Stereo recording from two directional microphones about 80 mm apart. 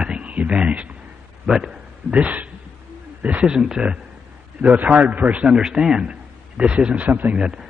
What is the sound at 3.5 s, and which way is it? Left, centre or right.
A man's voice, centre.